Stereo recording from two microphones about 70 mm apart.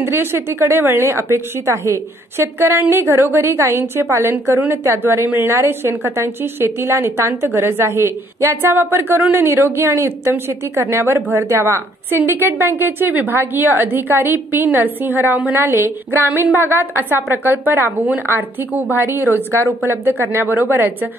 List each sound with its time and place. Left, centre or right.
0.0 s a woman's voice: right